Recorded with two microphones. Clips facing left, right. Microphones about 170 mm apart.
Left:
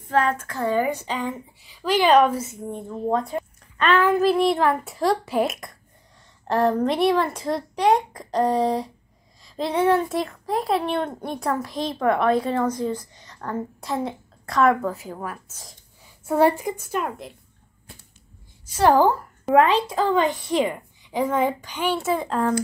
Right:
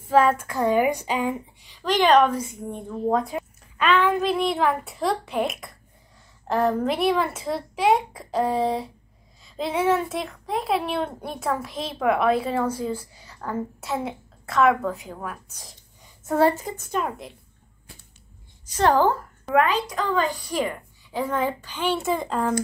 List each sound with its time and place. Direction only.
0.1 s a sound: 10° right (ahead or behind)
1.6 s speech: 5° left (ahead or behind)
16.3 s a woman's voice: 15° left (ahead or behind)
18.8 s speech: 10° left (ahead or behind)
19.5 s a woman's voice: 30° left (ahead or behind); by 22.5 s centre (ahead or behind)